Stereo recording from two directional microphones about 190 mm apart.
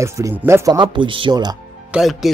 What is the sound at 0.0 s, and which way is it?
Speech, 15° right (ahead or behind).